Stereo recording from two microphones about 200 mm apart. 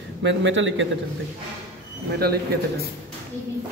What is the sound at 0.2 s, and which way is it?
Speech, 65° right (ahead or behind).